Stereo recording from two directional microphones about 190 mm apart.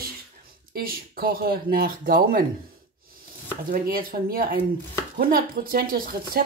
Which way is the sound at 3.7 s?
50° right (ahead or behind).